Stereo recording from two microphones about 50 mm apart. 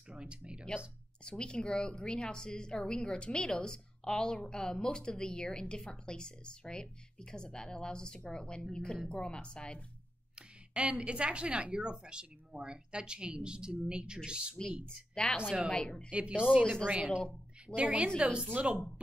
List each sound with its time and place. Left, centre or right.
0.2 s speech: centre
1.2 s a woman's voice: centre
10.7 s speech: right
15.2 s a woman's voice: centre
16.1 s speech: right
16.6 s a woman's voice: centre
17.7 s speech: right